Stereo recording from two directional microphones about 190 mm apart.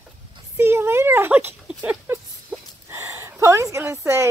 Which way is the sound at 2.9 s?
15° right (ahead or behind).